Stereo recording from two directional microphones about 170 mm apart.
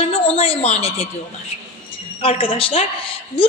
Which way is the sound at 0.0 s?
40° left (ahead or behind).